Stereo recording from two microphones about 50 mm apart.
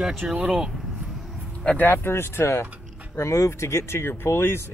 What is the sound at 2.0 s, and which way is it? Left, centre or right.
Speech, left.